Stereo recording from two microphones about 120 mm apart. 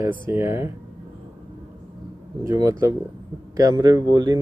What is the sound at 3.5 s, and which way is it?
Speech, 30° right (ahead or behind).